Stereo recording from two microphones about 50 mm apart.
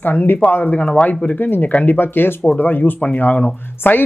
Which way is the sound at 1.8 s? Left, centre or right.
Left.